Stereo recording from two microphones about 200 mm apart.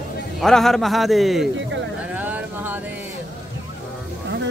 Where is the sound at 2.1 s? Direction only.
10° right (ahead or behind).